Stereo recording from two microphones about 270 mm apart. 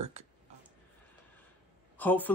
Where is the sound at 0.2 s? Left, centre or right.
Right.